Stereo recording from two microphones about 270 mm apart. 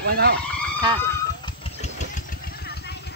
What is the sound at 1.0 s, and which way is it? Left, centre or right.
Vehicle, centre.